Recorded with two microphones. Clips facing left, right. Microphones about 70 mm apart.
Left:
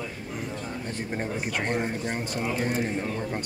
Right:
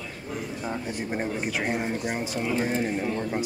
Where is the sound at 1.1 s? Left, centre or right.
Centre.